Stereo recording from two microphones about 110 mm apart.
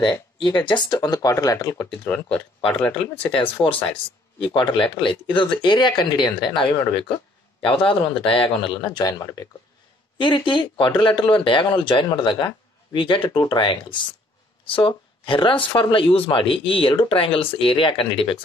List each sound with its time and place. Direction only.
0.0 s speech: 45° left (ahead or behind)
1.9 s speech: 10° left (ahead or behind)
4.7 s speech: 10° left (ahead or behind)
5.0 s speech: 50° left (ahead or behind)
10.1 s speech: 50° left (ahead or behind)